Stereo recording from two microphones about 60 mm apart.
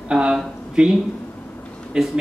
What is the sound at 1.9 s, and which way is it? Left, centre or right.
Speech, centre.